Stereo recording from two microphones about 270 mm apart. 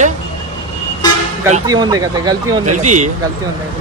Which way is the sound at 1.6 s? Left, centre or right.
Centre.